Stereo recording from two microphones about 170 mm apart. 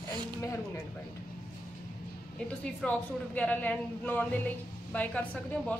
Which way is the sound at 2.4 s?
10° left (ahead or behind).